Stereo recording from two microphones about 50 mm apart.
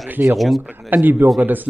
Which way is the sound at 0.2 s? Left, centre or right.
Right.